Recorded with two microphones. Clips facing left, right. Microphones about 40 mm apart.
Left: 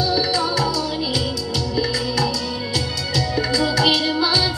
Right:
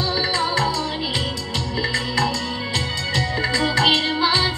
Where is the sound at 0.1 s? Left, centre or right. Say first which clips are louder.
Left 1 dB; right.